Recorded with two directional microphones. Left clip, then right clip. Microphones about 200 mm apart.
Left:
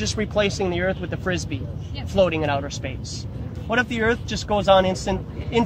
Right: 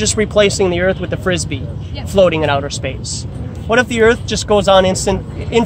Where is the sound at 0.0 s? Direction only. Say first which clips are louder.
Right 10 dB; 55° right (ahead or behind).